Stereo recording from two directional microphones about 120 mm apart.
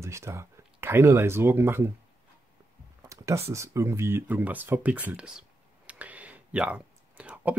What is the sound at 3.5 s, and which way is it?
Speech, 25° right (ahead or behind).